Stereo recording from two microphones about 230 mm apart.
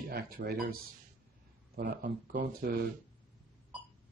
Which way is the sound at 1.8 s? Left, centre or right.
Right.